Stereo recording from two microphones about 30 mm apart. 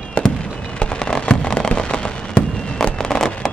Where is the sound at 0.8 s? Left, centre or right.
Left.